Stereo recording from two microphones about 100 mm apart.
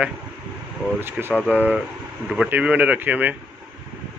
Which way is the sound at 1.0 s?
20° right (ahead or behind).